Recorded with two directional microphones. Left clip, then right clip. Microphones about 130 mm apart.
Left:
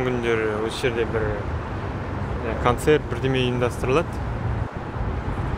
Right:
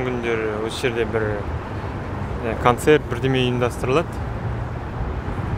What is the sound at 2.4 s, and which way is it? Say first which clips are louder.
Speech: right 4 dB; 30° right (ahead or behind).